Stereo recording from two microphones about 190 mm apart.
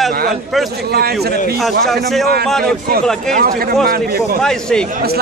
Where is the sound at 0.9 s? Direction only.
55° right (ahead or behind).